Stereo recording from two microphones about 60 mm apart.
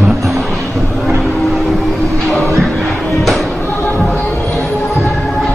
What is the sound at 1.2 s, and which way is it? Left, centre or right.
Vehicle, centre.